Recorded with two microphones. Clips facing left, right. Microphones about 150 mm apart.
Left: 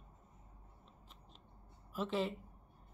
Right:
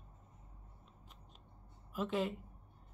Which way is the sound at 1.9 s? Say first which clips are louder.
Right 1 dB; centre (ahead or behind).